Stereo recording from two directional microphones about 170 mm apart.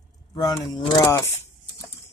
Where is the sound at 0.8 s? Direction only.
25° left (ahead or behind).